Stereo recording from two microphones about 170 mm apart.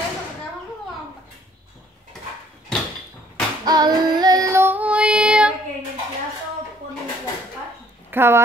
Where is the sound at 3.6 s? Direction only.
25° right (ahead or behind); by 5.5 s 5° right (ahead or behind).